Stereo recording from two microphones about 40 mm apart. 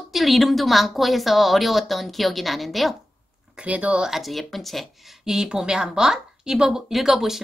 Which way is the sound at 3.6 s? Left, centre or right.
Right.